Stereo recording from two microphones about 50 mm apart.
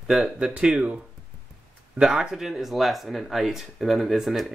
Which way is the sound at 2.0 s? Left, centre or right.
Centre.